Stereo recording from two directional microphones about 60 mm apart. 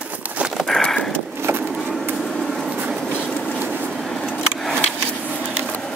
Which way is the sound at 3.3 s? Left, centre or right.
Centre.